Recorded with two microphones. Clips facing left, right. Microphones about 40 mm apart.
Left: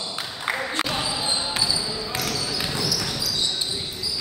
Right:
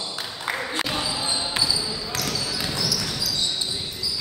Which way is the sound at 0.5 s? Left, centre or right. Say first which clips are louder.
Left 1 dB; centre.